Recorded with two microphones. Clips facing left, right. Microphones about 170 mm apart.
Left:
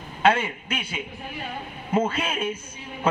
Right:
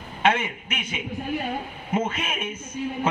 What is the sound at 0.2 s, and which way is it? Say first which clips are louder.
A man's voice: left 2 dB; 30° left (ahead or behind).